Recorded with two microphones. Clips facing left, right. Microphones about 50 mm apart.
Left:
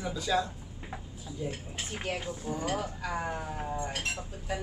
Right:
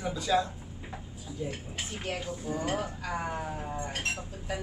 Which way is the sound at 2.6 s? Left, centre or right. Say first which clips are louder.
Right 1 dB; centre.